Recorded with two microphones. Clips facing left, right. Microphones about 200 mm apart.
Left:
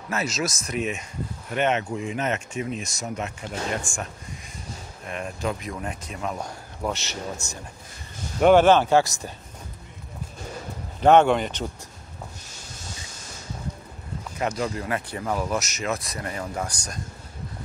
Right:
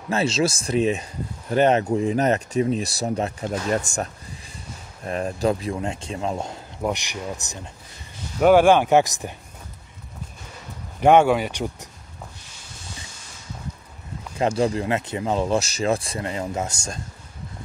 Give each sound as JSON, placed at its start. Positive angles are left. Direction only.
{"t": 0.1, "sound": "speech", "side_deg": -30}
{"t": 11.0, "sound": "speech", "side_deg": -10}
{"t": 14.4, "sound": "speech", "side_deg": -30}